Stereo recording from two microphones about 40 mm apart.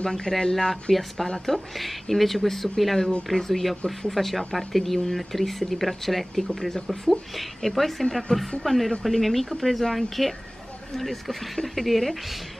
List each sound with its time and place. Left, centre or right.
0.0 s speech: centre